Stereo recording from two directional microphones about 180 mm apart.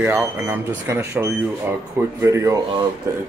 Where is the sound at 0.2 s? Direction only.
10° right (ahead or behind).